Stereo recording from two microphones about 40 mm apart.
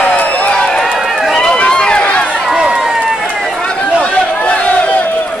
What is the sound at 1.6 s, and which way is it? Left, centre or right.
Run, left.